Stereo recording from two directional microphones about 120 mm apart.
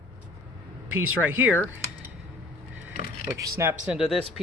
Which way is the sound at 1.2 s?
15° right (ahead or behind).